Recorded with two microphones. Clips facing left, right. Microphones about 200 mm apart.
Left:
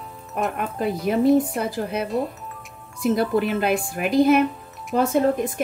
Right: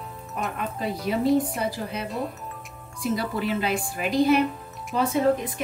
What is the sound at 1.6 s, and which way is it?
A woman's voice, 50° left (ahead or behind).